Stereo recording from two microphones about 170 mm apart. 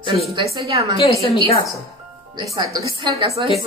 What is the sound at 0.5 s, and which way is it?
Speech, 35° right (ahead or behind).